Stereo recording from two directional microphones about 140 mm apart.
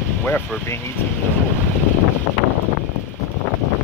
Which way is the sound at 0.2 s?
15° left (ahead or behind).